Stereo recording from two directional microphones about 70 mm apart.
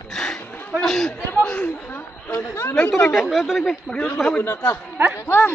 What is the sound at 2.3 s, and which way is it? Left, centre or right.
Speech, left.